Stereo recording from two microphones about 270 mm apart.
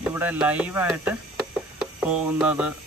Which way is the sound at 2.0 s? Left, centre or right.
Centre.